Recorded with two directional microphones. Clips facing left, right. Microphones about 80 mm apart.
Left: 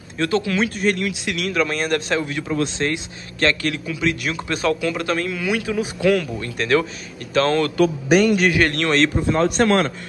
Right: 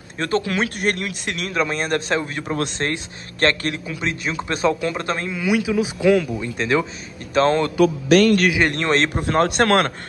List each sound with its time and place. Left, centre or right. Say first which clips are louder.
0.2 s a man's voice: left 1 dB; right
0.7 s speech: left 2 dB; right
0.9 s a man's voice: left 3 dB; right
8.1 s a man's voice: right 1 dB; centre
8.5 s speech: left 1 dB; centre
8.8 s a man's voice: left 1 dB; right
9.3 s speech: right 3 dB; right